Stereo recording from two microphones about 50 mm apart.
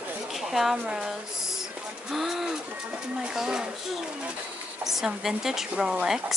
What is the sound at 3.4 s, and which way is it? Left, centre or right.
Speech, centre.